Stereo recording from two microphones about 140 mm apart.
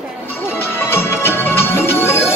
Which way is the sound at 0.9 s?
15° left (ahead or behind).